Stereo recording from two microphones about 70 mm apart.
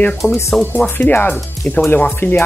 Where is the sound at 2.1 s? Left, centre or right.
Left.